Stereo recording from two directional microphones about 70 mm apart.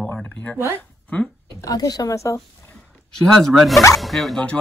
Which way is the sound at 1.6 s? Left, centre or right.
Left.